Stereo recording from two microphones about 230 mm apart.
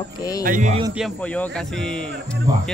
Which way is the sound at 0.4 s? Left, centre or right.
Right.